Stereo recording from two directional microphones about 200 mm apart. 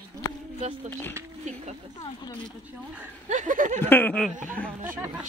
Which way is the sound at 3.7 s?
10° left (ahead or behind).